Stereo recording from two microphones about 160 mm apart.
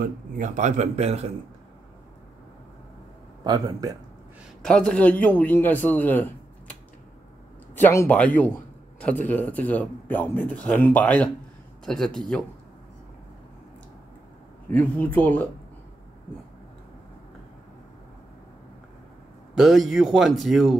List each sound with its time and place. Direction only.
0.0 s speech: 50° right (ahead or behind)
3.4 s speech: 25° right (ahead or behind)
4.6 s speech: 5° left (ahead or behind)
7.7 s speech: 15° left (ahead or behind)
14.7 s speech: 10° left (ahead or behind)
19.5 s speech: centre (ahead or behind)